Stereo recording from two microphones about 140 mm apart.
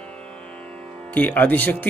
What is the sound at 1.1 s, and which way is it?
Speech, 10° left (ahead or behind).